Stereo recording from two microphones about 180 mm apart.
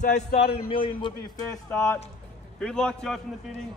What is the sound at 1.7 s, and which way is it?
A man's voice, 15° left (ahead or behind).